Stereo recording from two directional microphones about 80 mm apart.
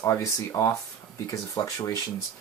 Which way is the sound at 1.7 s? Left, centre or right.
Left.